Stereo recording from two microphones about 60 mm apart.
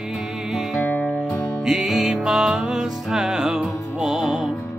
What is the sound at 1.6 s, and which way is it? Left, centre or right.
Music, centre.